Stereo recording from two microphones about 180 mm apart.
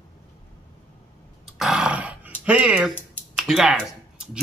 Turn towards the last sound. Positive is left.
turn(degrees=0)  # may be behind; listen again after turning